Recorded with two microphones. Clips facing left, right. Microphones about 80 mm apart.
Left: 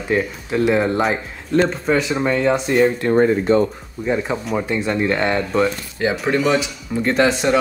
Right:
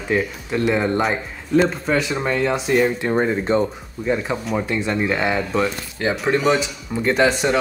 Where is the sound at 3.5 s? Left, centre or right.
Right.